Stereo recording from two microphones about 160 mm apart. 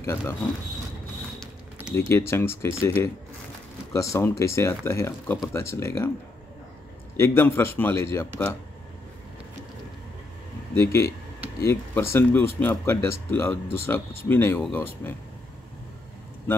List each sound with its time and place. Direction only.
0.0 s speech: 15° left (ahead or behind)
2.0 s speech: 15° left (ahead or behind)
7.2 s speech: 15° left (ahead or behind)
10.8 s speech: 15° left (ahead or behind)